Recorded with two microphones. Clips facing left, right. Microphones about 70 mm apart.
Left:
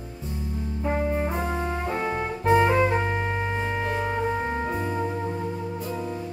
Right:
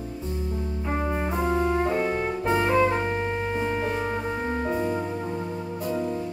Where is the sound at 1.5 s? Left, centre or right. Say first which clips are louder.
Right 5 dB; centre.